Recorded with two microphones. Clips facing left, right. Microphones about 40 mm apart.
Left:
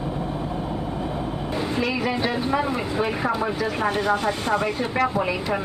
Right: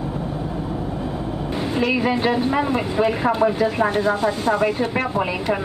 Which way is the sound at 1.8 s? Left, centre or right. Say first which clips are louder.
Right 6 dB; right.